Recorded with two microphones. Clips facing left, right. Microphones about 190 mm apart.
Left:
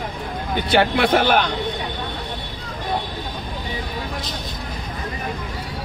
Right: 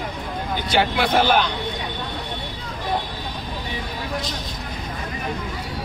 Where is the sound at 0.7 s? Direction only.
60° left (ahead or behind).